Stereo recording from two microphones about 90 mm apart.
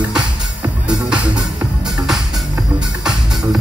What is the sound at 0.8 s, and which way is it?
Music, 10° right (ahead or behind).